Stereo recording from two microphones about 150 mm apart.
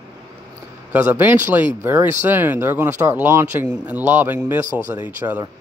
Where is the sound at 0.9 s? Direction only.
15° right (ahead or behind).